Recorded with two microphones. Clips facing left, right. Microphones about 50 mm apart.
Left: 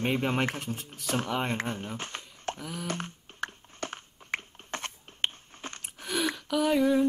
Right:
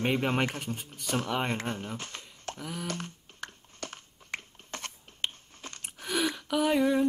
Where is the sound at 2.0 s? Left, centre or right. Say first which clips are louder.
Left 3 dB; left.